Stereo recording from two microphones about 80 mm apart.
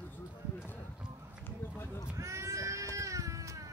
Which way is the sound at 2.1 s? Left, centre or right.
Right.